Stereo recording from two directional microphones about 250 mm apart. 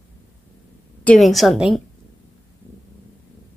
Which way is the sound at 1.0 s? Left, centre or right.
Centre.